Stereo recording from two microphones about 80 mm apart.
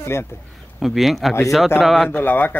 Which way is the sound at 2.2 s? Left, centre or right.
Left.